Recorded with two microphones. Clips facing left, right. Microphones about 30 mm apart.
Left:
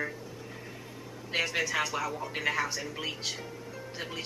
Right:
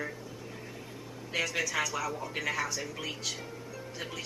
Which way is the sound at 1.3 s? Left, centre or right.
Left.